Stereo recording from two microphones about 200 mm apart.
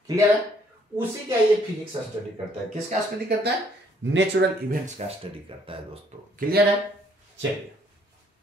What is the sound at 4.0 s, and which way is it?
Speech, 65° right (ahead or behind).